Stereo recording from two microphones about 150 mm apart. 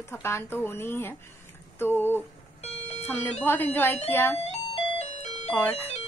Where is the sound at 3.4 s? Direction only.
15° left (ahead or behind).